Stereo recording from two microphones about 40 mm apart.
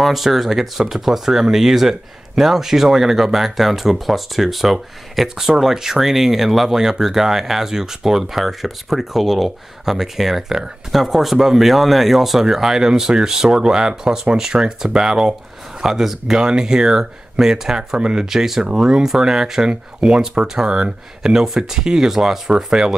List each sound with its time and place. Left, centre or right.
0.0 s speech: centre
15.8 s speech: centre
16.3 s speech: right
19.7 s speech: right